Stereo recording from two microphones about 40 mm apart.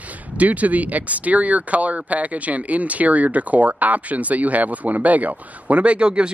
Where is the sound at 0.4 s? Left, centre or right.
Right.